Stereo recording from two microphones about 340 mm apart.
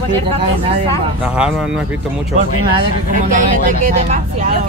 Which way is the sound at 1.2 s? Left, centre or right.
Centre.